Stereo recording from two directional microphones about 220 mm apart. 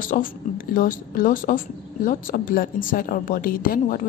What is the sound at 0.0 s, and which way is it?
A woman's voice, 40° left (ahead or behind).